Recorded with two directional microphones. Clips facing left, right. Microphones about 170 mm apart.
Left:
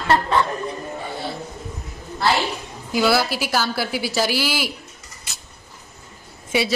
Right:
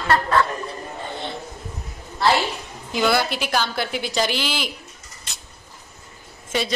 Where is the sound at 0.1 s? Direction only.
20° left (ahead or behind).